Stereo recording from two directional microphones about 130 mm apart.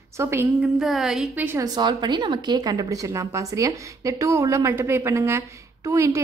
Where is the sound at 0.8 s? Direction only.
Centre (ahead or behind).